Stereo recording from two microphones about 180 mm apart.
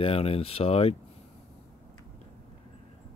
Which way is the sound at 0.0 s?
30° left (ahead or behind).